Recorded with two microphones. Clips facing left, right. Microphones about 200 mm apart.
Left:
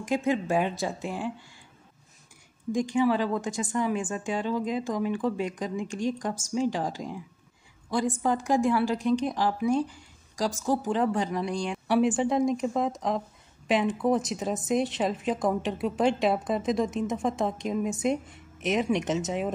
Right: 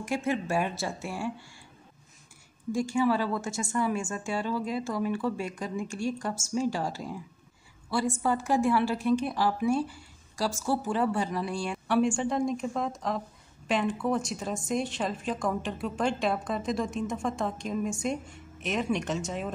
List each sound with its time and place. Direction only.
0.0 s a woman's voice: 15° left (ahead or behind)
2.7 s a woman's voice: 20° left (ahead or behind)